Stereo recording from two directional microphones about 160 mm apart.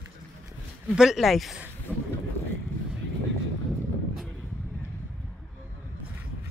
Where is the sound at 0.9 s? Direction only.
5° right (ahead or behind).